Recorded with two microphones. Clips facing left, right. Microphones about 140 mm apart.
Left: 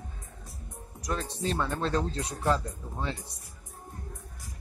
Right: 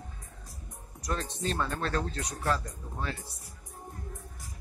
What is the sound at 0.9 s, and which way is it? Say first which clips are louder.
Speech: left 1 dB; 10° left (ahead or behind).